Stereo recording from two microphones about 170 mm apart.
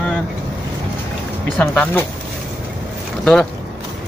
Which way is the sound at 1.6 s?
5° left (ahead or behind).